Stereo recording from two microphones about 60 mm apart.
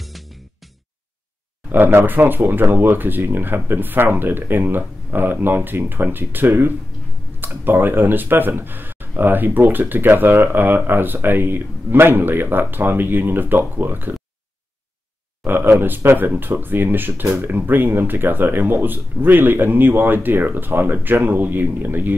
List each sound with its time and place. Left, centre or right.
1.7 s speech: right
15.4 s a sound: right
15.8 s speech: right